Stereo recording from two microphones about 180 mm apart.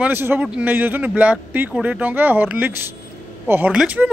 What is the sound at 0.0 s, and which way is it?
Speech, 10° right (ahead or behind).